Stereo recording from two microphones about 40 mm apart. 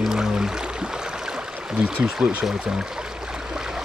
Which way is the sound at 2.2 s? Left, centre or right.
Right.